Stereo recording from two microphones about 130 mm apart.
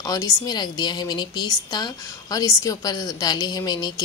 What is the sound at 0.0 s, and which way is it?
A woman's voice, 30° left (ahead or behind).